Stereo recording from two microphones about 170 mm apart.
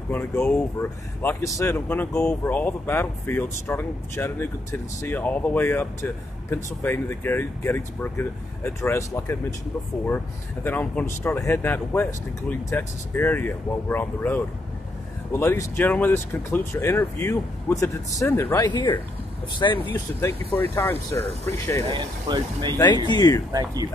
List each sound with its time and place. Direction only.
0.1 s speech: 10° left (ahead or behind)
18.7 s speech: 25° left (ahead or behind)
19.8 s speech: 10° left (ahead or behind)
21.9 s speech: 25° right (ahead or behind)
23.0 s speech: 25° left (ahead or behind)
23.5 s speech: 20° right (ahead or behind)